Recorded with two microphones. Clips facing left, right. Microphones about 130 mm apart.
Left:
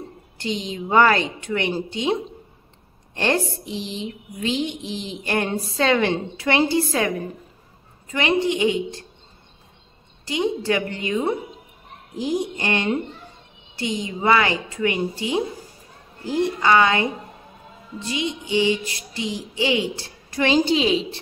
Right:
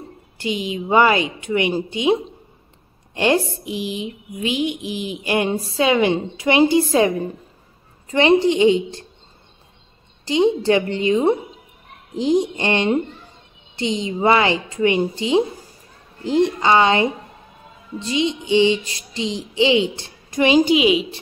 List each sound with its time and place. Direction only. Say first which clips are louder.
0.4 s mantra: right 3 dB; 10° right (ahead or behind)
3.2 s mantra: right 4 dB; 10° right (ahead or behind)
8.1 s music: right 6 dB; 30° right (ahead or behind)
10.2 s music: right 6 dB; 25° right (ahead or behind); by 21.2 s 10° right (ahead or behind)